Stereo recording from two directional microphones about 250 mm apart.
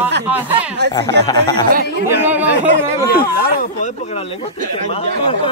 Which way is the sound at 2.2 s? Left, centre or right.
Centre.